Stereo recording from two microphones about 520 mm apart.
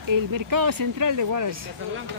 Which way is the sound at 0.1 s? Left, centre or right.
Right.